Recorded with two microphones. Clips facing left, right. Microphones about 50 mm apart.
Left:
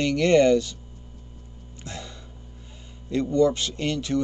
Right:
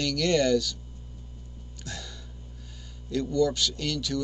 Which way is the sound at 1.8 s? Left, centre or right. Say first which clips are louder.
Left 3 dB; left.